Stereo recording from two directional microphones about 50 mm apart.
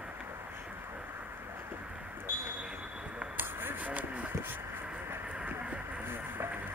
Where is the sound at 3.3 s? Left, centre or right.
Right.